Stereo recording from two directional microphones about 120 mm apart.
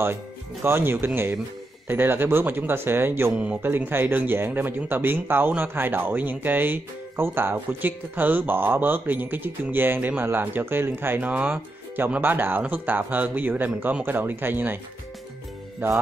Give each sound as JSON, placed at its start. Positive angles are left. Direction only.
{"t": 0.7, "sound": "speech", "side_deg": -20}